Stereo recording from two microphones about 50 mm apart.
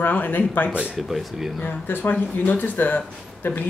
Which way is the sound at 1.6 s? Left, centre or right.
Left.